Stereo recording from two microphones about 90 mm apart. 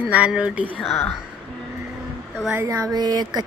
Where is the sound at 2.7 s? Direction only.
40° right (ahead or behind).